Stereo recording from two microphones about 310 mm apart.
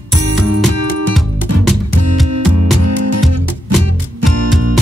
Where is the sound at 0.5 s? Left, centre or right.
Right.